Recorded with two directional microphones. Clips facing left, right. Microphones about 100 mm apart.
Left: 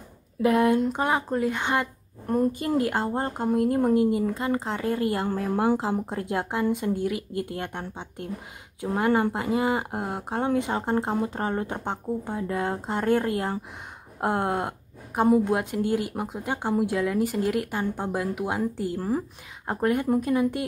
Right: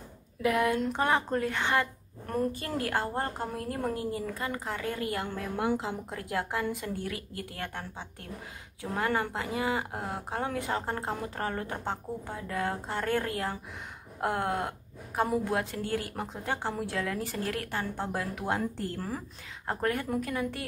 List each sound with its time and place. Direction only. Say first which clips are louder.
0.4 s a woman's voice: left 6 dB; 30° left (ahead or behind); by 18.9 s 10° left (ahead or behind)
18.9 s speech: left 9 dB; 20° left (ahead or behind)